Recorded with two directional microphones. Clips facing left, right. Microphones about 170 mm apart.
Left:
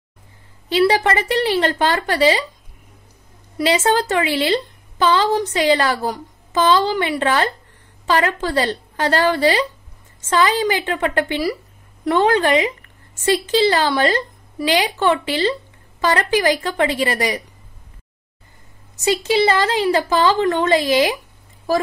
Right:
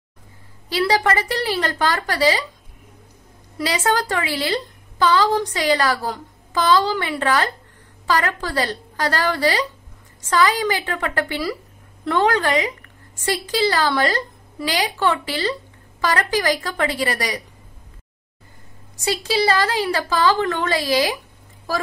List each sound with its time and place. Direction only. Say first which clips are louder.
0.7 s a woman's voice: left 3 dB; 25° left (ahead or behind)
3.5 s a woman's voice: left 4 dB; 25° left (ahead or behind)
19.0 s a woman's voice: left 4 dB; 20° left (ahead or behind)